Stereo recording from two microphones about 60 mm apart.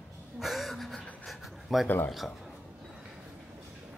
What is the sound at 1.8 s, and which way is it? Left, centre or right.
Speech, left.